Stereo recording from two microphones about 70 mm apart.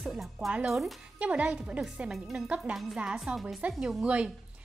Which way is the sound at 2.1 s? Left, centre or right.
Centre.